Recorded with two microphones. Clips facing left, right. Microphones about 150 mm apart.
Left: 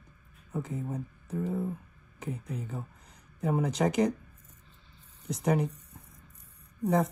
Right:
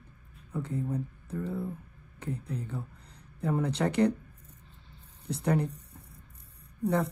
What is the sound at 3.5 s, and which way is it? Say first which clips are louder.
Speech: left 1 dB; 10° left (ahead or behind).